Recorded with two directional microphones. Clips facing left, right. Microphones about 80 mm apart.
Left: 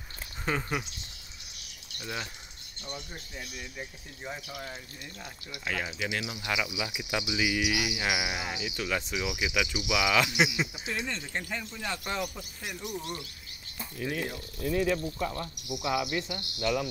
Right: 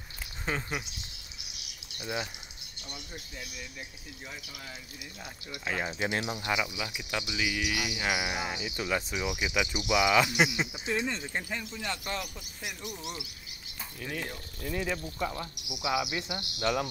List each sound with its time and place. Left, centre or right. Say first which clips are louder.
2.0 s speech: right 2 dB; centre
5.5 s speech: right 1 dB; right
5.9 s speech: right 2 dB; right
6.4 s speech: left 1 dB; centre
6.7 s speech: left 2 dB; centre
9.1 s speech: even; centre
11.7 s speech: left 2 dB; centre
16.3 s speech: even; right